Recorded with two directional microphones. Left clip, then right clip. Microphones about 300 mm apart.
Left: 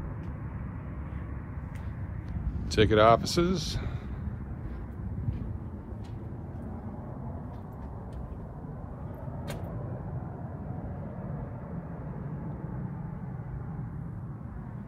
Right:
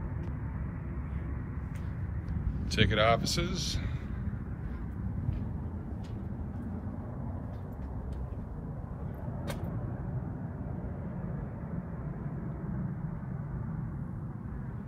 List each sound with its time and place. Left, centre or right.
2.7 s speech: centre